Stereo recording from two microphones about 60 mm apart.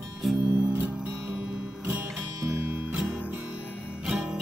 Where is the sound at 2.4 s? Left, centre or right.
Right.